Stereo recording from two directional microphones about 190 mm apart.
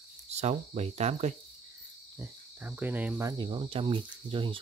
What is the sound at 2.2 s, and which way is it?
Cricket, 10° right (ahead or behind).